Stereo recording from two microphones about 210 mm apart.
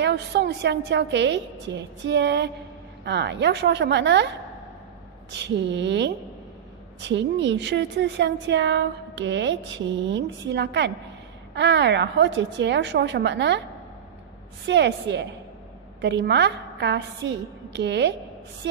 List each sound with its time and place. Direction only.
0.0 s a woman's voice: 55° right (ahead or behind)
5.3 s a woman's voice: 55° right (ahead or behind)
14.7 s a woman's voice: 55° right (ahead or behind)